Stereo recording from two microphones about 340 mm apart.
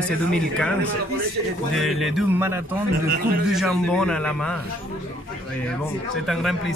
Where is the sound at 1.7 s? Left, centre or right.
Centre.